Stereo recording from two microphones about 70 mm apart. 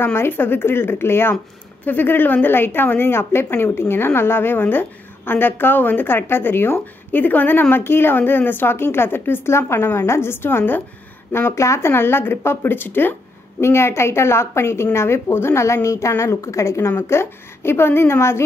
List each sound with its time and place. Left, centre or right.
0.0 s a woman's voice: left